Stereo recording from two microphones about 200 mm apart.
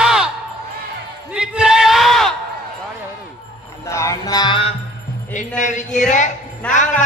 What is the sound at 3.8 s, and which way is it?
Music, 15° left (ahead or behind).